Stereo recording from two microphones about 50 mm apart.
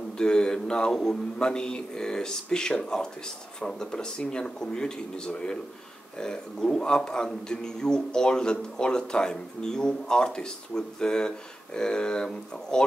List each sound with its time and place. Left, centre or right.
0.2 s a man's voice: centre